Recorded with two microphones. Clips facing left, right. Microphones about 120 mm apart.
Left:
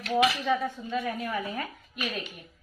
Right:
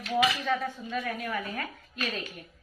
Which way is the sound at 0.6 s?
15° left (ahead or behind).